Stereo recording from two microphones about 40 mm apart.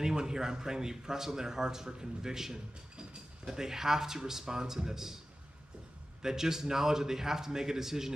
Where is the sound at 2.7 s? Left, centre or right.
Right.